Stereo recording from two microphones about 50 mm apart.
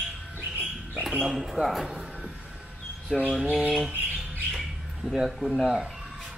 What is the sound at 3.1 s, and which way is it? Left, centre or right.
Speech, centre.